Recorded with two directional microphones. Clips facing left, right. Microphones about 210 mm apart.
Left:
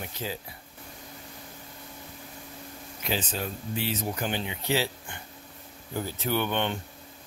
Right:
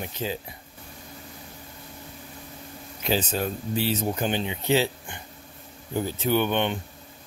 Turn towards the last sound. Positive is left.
turn(degrees=-15)  # may be behind; listen again after turning